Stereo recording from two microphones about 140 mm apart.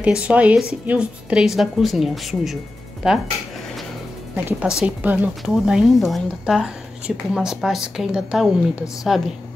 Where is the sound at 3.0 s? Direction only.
Centre (ahead or behind).